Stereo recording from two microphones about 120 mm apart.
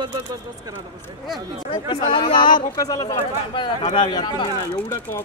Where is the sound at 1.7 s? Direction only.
40° left (ahead or behind).